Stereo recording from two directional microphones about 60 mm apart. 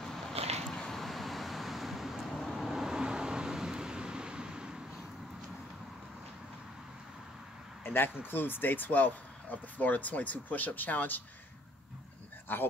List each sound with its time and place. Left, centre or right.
0.7 s vehicle: centre
7.8 s a sound: left
8.2 s speech: left
12.5 s a man's voice: left